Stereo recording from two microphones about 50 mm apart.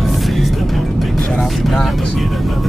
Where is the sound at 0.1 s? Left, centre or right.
Centre.